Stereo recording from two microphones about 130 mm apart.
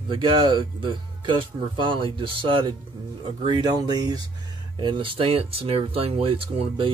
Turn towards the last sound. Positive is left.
turn(degrees=-45)  # may be behind; listen again after turning